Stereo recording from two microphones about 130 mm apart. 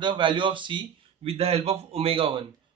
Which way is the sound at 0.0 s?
35° right (ahead or behind).